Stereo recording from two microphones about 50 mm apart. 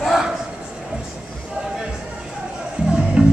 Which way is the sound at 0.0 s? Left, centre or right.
Centre.